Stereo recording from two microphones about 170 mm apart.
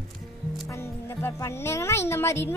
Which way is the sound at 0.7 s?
15° left (ahead or behind).